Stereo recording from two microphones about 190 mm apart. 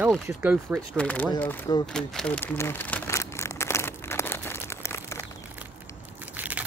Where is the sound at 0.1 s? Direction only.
5° right (ahead or behind).